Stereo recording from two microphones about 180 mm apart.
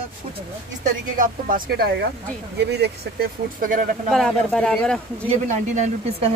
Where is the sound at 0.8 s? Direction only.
50° right (ahead or behind).